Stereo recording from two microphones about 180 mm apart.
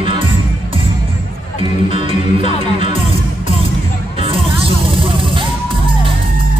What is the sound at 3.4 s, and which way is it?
Music, 30° right (ahead or behind).